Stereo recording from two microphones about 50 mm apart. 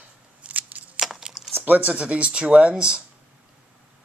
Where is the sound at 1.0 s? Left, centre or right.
Centre.